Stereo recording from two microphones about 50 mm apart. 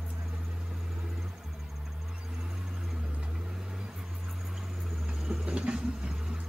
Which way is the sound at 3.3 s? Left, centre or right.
Centre.